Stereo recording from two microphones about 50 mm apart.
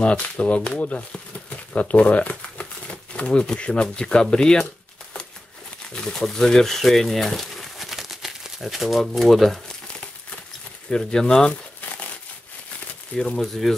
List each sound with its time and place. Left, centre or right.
0.0 s speech: left
6.0 s speech: centre
10.9 s speech: centre
13.1 s speech: left
13.4 s speech: centre